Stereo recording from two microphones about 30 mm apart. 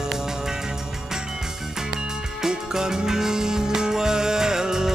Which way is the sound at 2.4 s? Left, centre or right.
Centre.